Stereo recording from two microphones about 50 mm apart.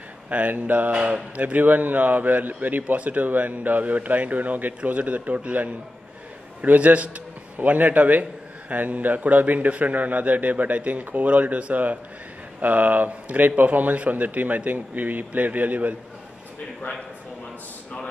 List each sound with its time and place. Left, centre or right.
0.3 s speech: right
0.9 s a man's voice: right